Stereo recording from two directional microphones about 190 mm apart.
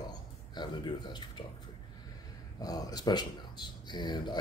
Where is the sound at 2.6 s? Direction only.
20° left (ahead or behind).